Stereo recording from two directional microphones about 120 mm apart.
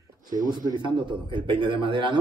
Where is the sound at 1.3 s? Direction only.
45° right (ahead or behind).